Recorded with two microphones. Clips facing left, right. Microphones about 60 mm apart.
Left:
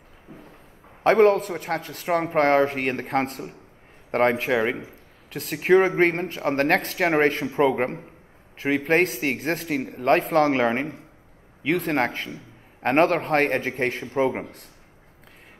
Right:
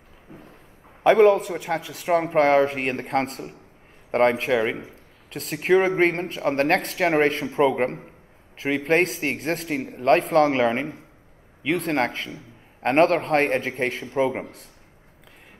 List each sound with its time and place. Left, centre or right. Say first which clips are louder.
1.1 s speech: right 1 dB; centre